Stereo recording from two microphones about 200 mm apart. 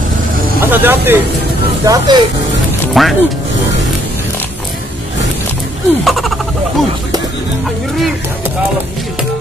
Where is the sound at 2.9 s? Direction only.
Centre (ahead or behind).